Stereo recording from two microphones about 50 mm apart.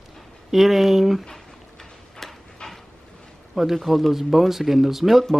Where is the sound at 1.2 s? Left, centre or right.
Centre.